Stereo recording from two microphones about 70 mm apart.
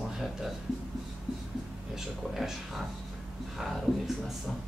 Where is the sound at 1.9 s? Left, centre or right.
Centre.